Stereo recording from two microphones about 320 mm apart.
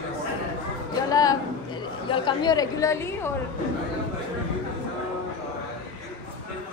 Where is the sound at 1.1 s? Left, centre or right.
Centre.